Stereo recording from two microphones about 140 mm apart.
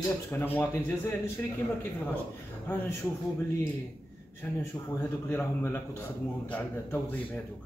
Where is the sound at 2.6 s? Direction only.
15° left (ahead or behind).